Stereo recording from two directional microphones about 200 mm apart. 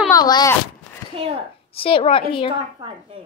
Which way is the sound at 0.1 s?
20° left (ahead or behind).